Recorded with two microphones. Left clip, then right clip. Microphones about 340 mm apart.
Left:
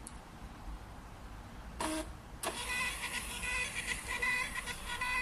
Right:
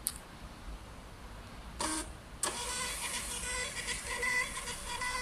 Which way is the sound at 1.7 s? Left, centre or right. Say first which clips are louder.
Right 1 dB; centre.